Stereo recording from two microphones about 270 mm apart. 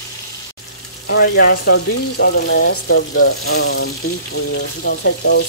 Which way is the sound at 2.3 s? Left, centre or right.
Left.